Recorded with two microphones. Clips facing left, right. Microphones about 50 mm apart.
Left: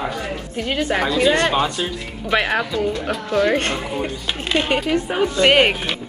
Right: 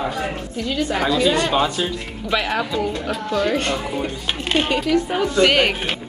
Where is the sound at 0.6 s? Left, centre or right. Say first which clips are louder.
Left 1 dB; left.